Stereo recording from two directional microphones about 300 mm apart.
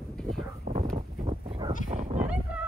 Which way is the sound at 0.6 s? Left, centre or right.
Right.